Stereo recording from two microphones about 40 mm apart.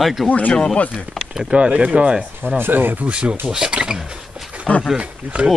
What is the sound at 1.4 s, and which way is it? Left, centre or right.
Speech, right.